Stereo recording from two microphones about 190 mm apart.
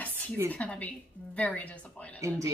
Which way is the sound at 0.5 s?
5° left (ahead or behind).